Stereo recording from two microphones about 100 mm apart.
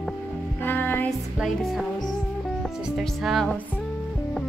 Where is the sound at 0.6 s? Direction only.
20° left (ahead or behind).